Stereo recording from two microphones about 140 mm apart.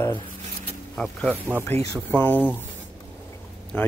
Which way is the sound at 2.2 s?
15° left (ahead or behind).